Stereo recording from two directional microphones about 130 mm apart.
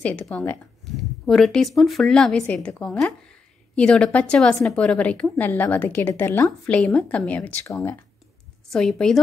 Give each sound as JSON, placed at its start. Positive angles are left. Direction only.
{"t": 0.0, "sound": "speech", "side_deg": 10}
{"t": 7.6, "sound": "speech", "side_deg": 25}
{"t": 8.6, "sound": "speech", "side_deg": 5}